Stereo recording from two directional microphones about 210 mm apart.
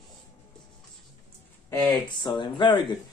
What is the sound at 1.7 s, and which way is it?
Speech, 20° left (ahead or behind).